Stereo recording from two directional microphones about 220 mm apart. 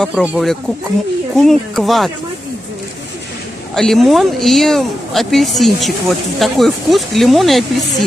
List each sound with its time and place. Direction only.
0.0 s speech: centre (ahead or behind)
3.7 s speech: centre (ahead or behind)